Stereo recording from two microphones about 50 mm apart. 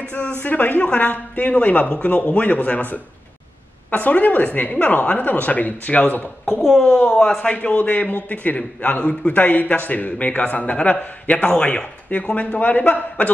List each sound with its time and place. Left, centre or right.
0.4 s a man's voice: left
6.6 s speech: centre
7.3 s a man's voice: left